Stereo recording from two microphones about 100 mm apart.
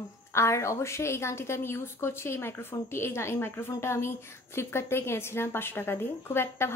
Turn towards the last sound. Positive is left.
turn(degrees=25)  # may be behind; listen again after turning